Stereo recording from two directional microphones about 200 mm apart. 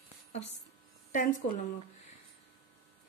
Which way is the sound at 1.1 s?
40° left (ahead or behind).